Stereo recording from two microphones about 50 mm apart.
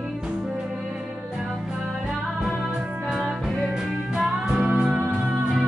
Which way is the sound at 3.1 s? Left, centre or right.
Centre.